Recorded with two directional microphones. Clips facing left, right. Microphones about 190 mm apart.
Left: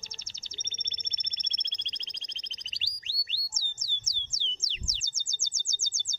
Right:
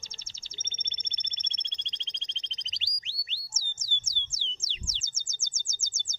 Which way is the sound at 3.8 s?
25° right (ahead or behind).